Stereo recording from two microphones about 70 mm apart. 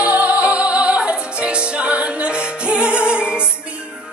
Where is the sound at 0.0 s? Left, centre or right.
Right.